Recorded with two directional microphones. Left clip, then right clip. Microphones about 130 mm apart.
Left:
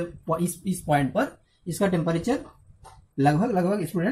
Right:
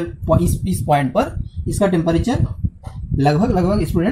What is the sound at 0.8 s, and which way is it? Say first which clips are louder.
Speech: right 7 dB; 40° right (ahead or behind).